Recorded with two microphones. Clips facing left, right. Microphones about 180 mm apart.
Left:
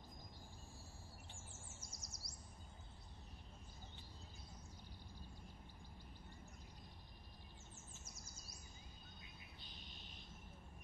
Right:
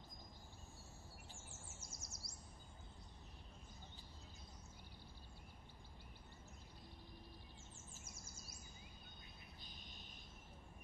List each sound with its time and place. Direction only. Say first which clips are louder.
1.8 s bird: right 1 dB; 25° right (ahead or behind)